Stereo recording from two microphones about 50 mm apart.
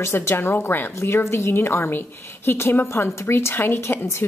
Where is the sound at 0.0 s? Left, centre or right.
Left.